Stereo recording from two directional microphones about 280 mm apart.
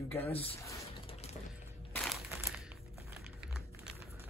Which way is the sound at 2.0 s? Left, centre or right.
Centre.